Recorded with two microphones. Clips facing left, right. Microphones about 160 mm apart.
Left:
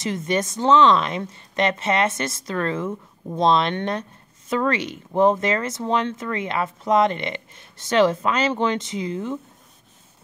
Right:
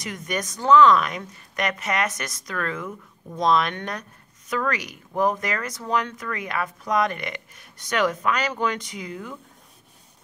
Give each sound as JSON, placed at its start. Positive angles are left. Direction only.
{"t": 0.0, "sound": "speech", "side_deg": 25}